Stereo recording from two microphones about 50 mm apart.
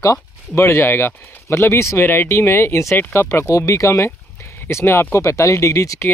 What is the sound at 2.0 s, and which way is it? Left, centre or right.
Speech, left.